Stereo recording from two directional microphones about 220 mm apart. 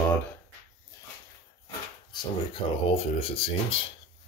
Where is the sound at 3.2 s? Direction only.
25° left (ahead or behind).